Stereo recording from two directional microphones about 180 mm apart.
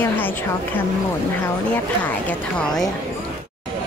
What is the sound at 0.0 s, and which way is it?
Speech, 10° left (ahead or behind).